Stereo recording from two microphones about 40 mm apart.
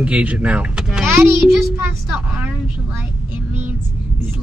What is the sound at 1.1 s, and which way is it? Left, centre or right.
Music, right.